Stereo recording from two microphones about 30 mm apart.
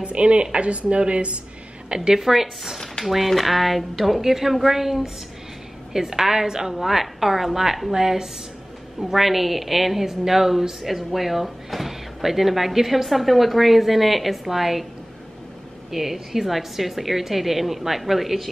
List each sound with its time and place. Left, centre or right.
0.0 s a woman's voice: right
2.0 s a woman's voice: centre
2.2 s a woman's voice: centre
6.7 s a woman's voice: centre
9.0 s a woman's voice: centre
15.9 s speech: centre